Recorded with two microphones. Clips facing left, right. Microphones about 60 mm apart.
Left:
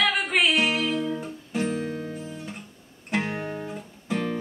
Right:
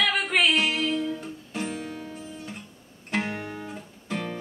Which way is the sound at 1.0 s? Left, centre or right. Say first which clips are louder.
Left 1 dB; left.